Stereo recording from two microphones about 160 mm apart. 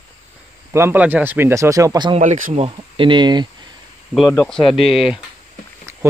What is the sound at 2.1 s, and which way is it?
Speech, 50° right (ahead or behind).